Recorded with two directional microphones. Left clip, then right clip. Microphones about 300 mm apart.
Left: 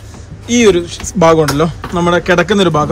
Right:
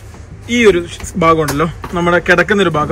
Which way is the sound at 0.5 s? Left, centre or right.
Centre.